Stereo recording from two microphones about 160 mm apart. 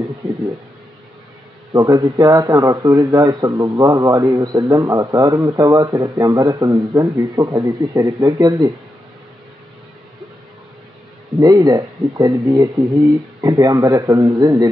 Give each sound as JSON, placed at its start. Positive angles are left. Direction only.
{"t": 1.7, "sound": "a man's voice", "side_deg": -20}
{"t": 11.3, "sound": "a man's voice", "side_deg": -25}